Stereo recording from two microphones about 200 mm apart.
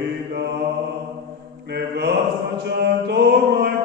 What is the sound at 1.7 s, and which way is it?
Mantra, 55° right (ahead or behind).